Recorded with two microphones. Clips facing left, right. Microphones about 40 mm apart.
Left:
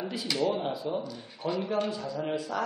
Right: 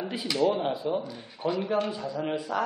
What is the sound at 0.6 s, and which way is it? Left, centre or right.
Speech, centre.